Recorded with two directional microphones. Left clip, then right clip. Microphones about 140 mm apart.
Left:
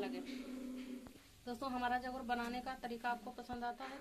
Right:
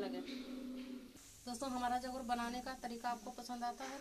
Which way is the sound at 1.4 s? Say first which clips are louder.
Even; 40° right (ahead or behind).